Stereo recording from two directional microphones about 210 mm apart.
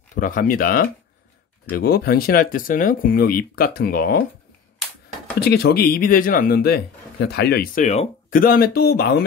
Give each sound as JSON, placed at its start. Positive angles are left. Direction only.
{"t": 0.1, "sound": "a man's voice", "side_deg": 40}
{"t": 5.4, "sound": "a man's voice", "side_deg": 50}